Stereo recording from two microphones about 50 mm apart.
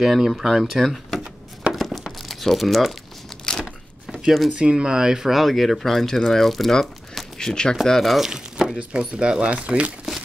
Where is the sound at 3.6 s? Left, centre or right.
Centre.